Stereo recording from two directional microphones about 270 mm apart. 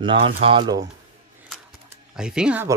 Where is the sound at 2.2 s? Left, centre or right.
Centre.